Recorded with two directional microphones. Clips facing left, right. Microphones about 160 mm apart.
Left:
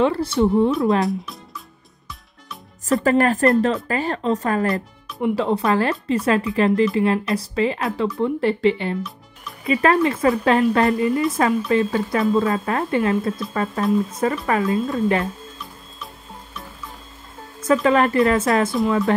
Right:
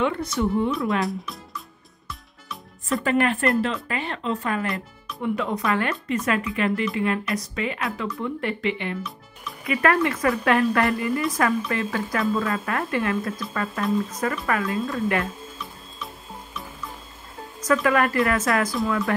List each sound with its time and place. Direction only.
0.0 s speech: 30° left (ahead or behind)
1.0 s music: centre (ahead or behind)
2.9 s speech: 40° left (ahead or behind); by 15.2 s 25° left (ahead or behind)
17.8 s speech: 25° left (ahead or behind)